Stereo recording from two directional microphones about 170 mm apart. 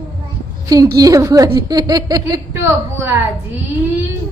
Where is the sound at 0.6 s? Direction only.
20° right (ahead or behind).